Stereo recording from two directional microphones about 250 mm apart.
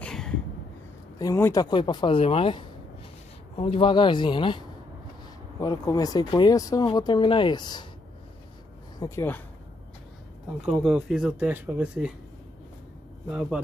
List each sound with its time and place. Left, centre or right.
0.0 s a sound: centre
1.1 s speech: centre
9.0 s speech: centre
10.6 s speech: centre
13.3 s speech: centre